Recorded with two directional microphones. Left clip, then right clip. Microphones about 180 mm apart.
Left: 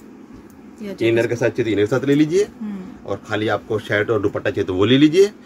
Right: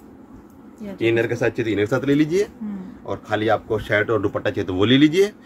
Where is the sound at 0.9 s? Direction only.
15° right (ahead or behind).